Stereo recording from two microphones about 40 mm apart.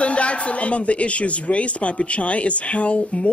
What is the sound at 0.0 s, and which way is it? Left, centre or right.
Speech, left.